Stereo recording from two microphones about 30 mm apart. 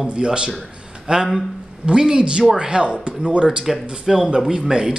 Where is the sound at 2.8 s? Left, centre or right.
Right.